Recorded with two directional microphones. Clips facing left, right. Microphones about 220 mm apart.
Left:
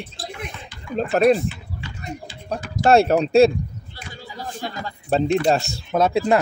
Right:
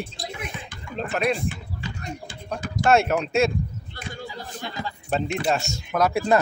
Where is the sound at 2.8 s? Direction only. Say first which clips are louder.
Left 5 dB; 35° left (ahead or behind).